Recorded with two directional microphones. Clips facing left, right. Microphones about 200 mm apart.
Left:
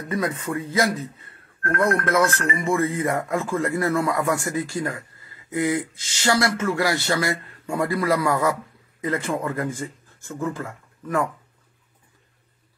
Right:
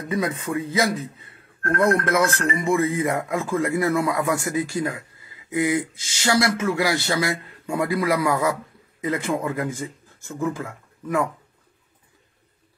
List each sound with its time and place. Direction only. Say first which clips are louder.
0.1 s a man's voice: right 1 dB; 15° right (ahead or behind)